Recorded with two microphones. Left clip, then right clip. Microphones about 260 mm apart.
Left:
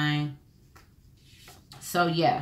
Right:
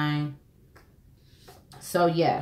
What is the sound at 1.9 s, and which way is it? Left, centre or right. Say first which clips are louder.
Speech: right 1 dB; centre.